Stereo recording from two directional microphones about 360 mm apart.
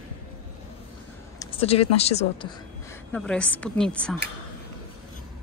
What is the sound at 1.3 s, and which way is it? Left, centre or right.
Speech, centre.